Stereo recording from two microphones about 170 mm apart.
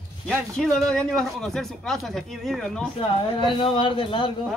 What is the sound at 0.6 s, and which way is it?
Speech, 5° left (ahead or behind).